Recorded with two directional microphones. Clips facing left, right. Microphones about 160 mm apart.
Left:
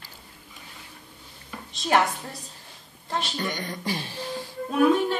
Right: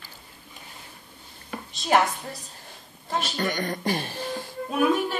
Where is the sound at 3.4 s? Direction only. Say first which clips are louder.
Right 4 dB; 50° right (ahead or behind).